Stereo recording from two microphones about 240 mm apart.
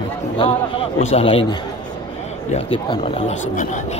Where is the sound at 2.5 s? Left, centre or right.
Left.